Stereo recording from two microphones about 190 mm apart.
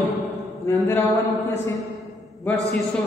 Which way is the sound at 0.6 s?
15° left (ahead or behind).